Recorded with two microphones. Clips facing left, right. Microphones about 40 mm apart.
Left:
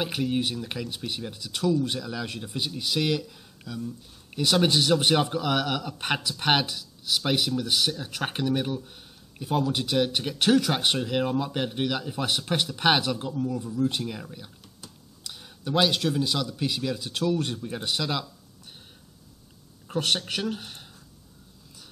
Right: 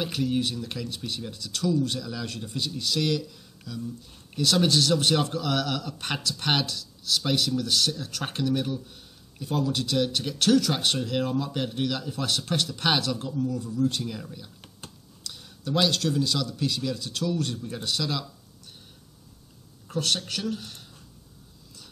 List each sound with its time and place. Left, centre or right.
0.0 s speech: centre
19.9 s speech: left